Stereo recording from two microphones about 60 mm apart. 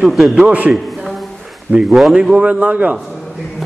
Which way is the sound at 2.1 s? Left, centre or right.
Centre.